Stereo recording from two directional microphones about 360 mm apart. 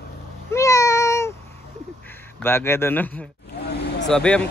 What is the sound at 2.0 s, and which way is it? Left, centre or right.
Speech, centre.